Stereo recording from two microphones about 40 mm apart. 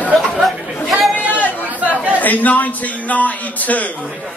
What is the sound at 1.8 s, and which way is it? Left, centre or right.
Chatter, right.